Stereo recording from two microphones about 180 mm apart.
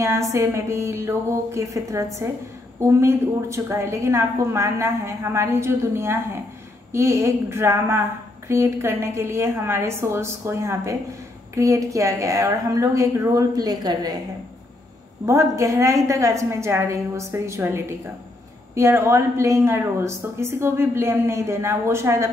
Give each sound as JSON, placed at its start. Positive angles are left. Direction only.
{"t": 0.0, "sound": "a woman's voice", "side_deg": -15}
{"t": 15.2, "sound": "a woman's voice", "side_deg": -15}